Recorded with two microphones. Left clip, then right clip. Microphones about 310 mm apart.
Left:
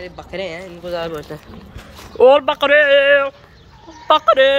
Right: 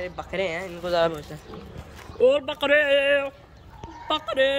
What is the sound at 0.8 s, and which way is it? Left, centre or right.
Speech, centre.